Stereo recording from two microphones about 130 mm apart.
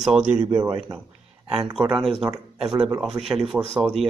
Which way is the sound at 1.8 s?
Centre (ahead or behind).